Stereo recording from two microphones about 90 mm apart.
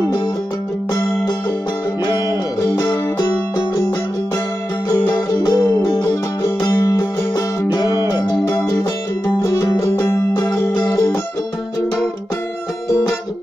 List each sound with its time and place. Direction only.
2.6 s music: 35° left (ahead or behind)
5.3 s music: 45° left (ahead or behind)
7.8 s music: 35° right (ahead or behind)
9.4 s music: 45° left (ahead or behind)